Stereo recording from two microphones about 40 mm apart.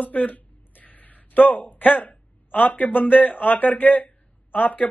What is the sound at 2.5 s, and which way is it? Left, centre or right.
A man's voice, left.